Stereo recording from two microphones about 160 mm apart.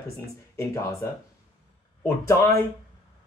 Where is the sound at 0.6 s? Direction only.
20° left (ahead or behind).